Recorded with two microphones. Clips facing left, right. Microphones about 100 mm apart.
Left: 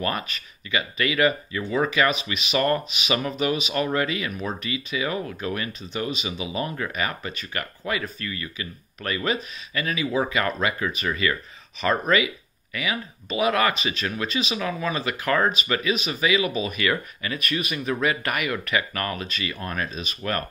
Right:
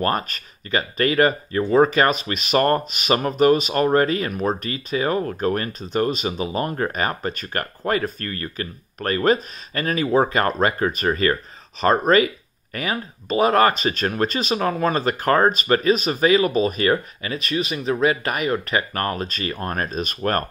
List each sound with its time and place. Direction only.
0.0 s speech: 40° right (ahead or behind)